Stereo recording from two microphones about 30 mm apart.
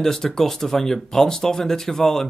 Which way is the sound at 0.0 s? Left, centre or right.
Centre.